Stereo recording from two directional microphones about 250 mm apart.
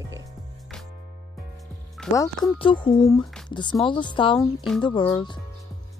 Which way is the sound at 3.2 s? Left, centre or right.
Centre.